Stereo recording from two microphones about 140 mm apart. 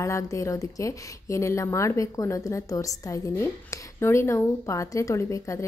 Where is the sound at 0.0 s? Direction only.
20° left (ahead or behind).